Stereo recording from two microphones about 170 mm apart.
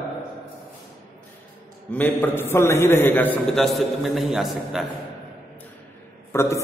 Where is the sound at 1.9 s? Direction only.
10° left (ahead or behind).